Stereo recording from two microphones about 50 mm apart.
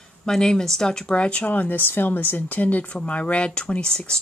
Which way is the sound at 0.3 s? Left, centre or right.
Centre.